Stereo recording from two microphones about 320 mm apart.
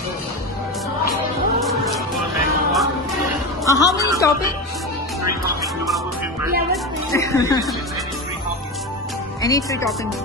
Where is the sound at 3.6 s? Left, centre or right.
Centre.